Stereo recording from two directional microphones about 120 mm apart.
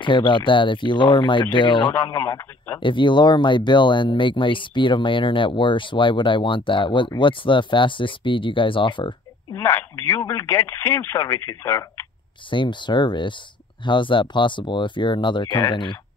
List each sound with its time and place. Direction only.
0.0 s speech: 40° left (ahead or behind)
2.0 s speech: 25° left (ahead or behind)
2.8 s speech: 40° left (ahead or behind)
9.5 s speech: 25° left (ahead or behind)
12.4 s speech: 40° left (ahead or behind)